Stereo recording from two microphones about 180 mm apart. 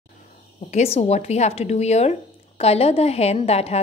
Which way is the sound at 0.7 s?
35° left (ahead or behind).